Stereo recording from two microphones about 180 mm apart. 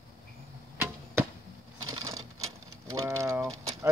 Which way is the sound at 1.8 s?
20° right (ahead or behind).